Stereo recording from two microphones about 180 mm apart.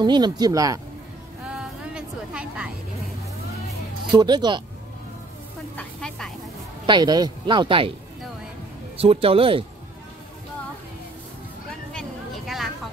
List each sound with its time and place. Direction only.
0.0 s speech: 25° right (ahead or behind)
1.5 s a sound: 5° right (ahead or behind)
4.1 s speech: 25° right (ahead or behind)
5.8 s sizzle: 5° left (ahead or behind)
6.9 s speech: 25° right (ahead or behind)
8.9 s speech: 35° right (ahead or behind)
11.9 s a sound: centre (ahead or behind)